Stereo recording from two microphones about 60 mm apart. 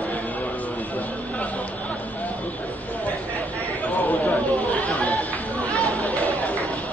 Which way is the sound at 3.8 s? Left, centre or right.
Left.